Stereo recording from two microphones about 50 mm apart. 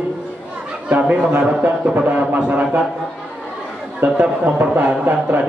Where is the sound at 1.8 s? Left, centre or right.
Right.